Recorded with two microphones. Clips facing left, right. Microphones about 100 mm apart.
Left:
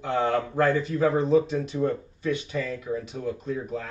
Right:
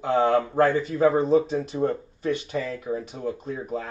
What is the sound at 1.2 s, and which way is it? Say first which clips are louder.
Speech: right 1 dB; 35° right (ahead or behind).